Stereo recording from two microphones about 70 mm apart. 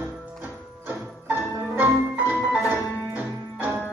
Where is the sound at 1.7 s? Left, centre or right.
Right.